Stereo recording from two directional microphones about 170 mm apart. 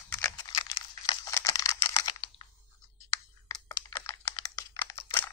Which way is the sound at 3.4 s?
25° left (ahead or behind).